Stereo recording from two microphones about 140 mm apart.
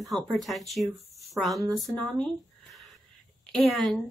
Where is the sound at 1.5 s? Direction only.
30° right (ahead or behind).